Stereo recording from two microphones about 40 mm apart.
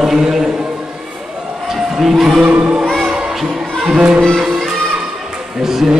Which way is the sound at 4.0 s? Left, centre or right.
Right.